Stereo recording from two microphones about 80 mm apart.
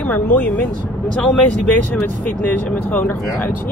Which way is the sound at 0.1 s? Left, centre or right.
Left.